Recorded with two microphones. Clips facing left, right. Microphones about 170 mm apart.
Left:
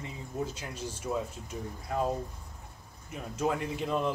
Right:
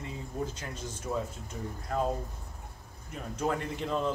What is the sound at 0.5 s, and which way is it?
Speech, 10° left (ahead or behind).